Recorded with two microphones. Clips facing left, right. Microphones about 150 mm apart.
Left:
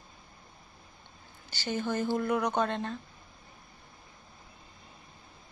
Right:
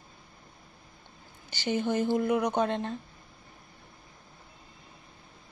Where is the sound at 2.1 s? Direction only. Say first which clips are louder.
Right 2 dB; 5° right (ahead or behind).